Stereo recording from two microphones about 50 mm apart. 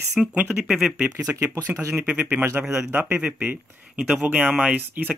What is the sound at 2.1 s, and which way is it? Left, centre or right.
Speech, right.